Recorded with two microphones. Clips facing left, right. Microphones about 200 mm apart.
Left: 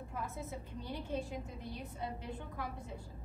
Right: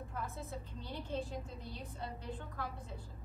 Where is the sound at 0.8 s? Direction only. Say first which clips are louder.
Left 1 dB; 15° left (ahead or behind).